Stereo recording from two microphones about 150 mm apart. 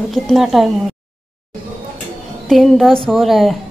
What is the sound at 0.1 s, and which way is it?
Speech, centre (ahead or behind).